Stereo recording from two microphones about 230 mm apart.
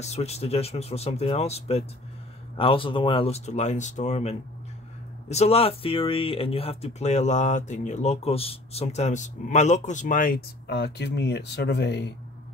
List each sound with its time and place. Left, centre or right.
0.0 s speech: left